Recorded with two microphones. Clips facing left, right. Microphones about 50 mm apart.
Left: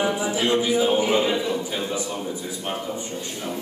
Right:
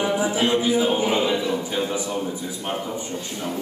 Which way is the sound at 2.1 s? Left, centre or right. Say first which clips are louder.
Right 2 dB; centre.